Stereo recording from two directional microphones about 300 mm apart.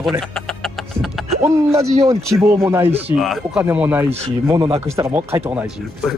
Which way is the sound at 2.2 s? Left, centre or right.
Centre.